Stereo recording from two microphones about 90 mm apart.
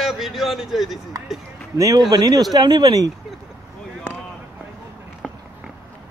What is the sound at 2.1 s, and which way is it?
Speech, 50° right (ahead or behind).